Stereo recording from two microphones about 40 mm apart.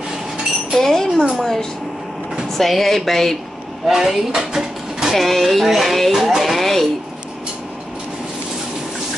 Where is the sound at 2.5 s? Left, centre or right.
Centre.